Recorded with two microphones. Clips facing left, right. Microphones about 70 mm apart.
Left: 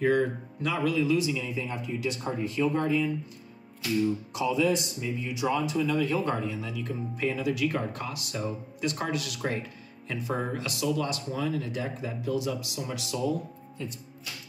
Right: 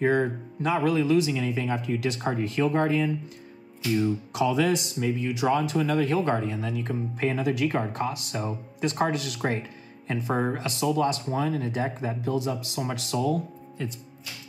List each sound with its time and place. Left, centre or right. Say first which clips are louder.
0.0 s speech: right 1 dB; right
4.3 s speech: right 4 dB; right